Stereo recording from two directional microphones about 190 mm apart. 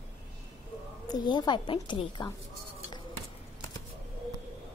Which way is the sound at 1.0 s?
20° left (ahead or behind).